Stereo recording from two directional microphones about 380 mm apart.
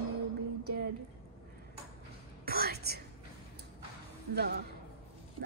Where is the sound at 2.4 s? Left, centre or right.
Right.